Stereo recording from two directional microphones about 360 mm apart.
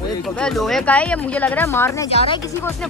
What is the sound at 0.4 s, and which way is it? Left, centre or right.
Speech, centre.